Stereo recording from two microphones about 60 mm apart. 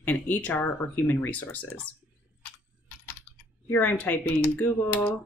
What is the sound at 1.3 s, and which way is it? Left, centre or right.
Speech, left.